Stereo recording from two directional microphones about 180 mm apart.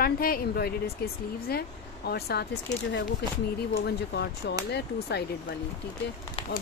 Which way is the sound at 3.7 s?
65° left (ahead or behind).